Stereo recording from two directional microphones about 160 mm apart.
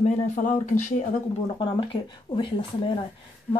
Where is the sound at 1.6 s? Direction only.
30° left (ahead or behind).